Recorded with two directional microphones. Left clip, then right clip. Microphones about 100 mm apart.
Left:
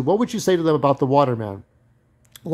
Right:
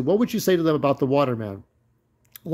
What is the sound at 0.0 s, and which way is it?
Speech, 40° left (ahead or behind).